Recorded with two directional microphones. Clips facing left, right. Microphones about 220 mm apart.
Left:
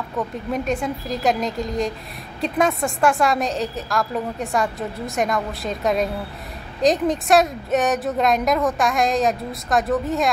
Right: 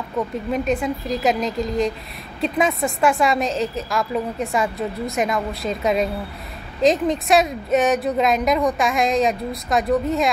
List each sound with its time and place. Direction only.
0.5 s a woman's voice: centre (ahead or behind)